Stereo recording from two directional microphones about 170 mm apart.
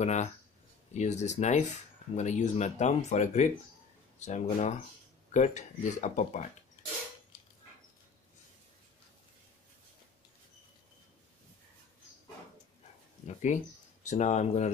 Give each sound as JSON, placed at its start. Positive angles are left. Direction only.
{"t": 0.0, "sound": "speech", "side_deg": 40}
{"t": 13.5, "sound": "speech", "side_deg": 50}